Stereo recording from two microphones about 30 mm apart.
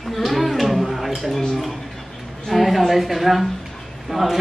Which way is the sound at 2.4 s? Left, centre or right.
Centre.